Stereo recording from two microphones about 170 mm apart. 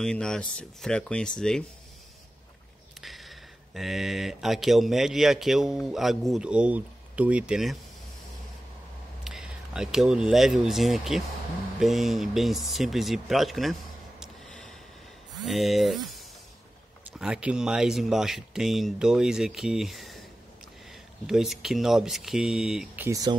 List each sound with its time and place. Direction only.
0.0 s speech: 5° left (ahead or behind)
3.0 s speech: centre (ahead or behind)
9.2 s a sound: 5° right (ahead or behind)
10.6 s speech: centre (ahead or behind)
14.2 s gasp: centre (ahead or behind)
15.3 s speech: centre (ahead or behind)
17.2 s speech: 5° right (ahead or behind)
21.3 s speech: centre (ahead or behind)
23.0 s speech: 20° right (ahead or behind)